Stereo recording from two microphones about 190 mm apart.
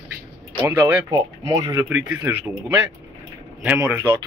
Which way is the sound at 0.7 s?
10° right (ahead or behind).